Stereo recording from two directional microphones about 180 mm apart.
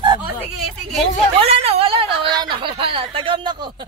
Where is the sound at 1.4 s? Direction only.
35° right (ahead or behind).